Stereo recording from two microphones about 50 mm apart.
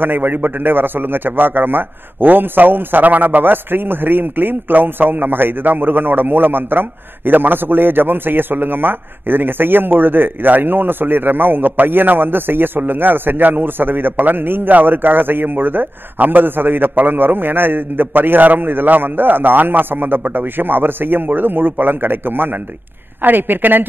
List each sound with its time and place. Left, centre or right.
0.0 s a man's voice: right